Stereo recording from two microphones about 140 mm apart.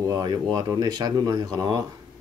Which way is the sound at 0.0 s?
30° right (ahead or behind).